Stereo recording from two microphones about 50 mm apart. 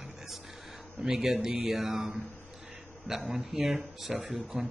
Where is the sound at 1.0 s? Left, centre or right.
Centre.